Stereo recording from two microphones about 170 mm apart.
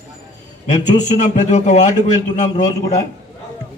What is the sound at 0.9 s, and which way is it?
A man's voice, 45° left (ahead or behind).